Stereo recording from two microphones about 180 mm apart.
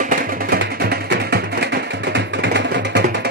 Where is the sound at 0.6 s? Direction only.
60° right (ahead or behind).